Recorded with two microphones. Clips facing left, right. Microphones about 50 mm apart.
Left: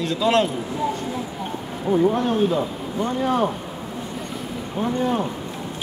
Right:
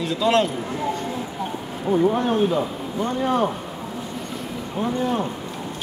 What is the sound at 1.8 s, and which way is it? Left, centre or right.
Speech, centre.